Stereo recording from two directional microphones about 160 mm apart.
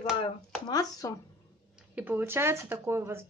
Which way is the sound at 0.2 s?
25° left (ahead or behind).